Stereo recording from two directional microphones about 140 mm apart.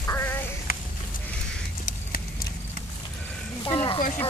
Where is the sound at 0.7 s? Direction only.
90° left.